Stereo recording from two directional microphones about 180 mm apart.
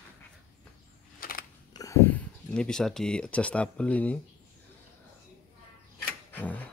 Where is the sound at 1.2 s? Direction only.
50° left (ahead or behind).